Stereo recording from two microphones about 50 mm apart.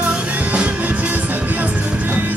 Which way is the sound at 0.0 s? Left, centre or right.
Right.